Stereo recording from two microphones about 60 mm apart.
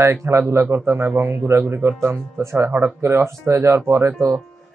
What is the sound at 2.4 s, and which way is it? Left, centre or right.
A man's voice, right.